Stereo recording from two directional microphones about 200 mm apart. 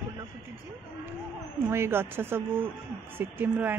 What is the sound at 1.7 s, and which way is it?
Speech, 10° right (ahead or behind).